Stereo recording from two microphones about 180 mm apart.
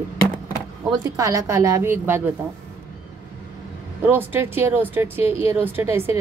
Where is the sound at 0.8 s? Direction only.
20° right (ahead or behind).